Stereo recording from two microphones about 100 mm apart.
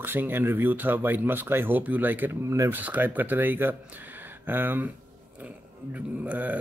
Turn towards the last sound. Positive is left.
turn(degrees=-15)  # may be behind; listen again after turning